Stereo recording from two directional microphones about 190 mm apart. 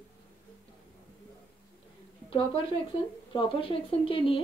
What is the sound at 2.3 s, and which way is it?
A woman's voice, 25° left (ahead or behind).